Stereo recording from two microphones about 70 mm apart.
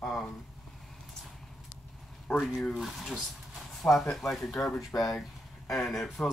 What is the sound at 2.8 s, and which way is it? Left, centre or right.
Speech, centre.